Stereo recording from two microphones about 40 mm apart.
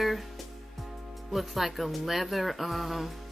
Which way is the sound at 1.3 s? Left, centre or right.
Centre.